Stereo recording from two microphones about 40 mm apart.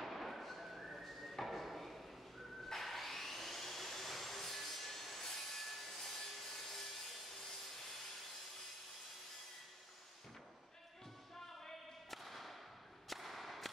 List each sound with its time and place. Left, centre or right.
0.0 s a sound: centre
2.7 s vacuum cleaner: centre
11.3 s basketball bounce: centre
12.2 s whip: centre